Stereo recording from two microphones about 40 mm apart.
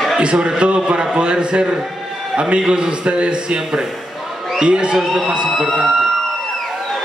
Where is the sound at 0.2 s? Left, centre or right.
Right.